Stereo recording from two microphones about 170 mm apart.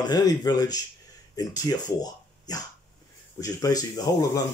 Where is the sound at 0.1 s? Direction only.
20° left (ahead or behind).